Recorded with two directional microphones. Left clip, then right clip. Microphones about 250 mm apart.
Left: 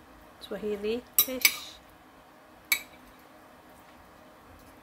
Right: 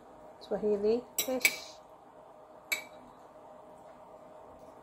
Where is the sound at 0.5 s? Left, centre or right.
Centre.